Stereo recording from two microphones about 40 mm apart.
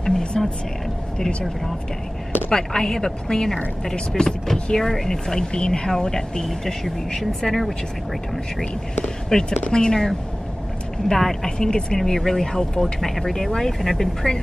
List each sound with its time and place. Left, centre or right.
0.3 s speech: centre
2.5 s speech: centre
9.3 s speech: centre